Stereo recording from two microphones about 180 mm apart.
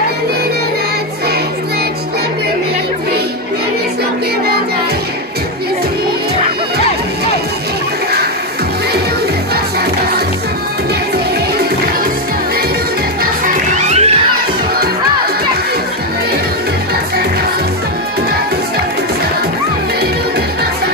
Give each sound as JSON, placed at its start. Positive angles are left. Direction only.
{"t": 13.2, "sound": "music", "side_deg": -45}